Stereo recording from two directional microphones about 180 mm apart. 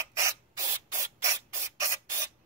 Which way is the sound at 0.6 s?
15° right (ahead or behind).